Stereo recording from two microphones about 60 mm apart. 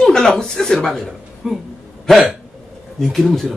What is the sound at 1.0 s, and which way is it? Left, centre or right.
Speech, centre.